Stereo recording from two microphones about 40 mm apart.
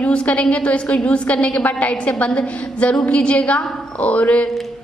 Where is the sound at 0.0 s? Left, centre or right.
Left.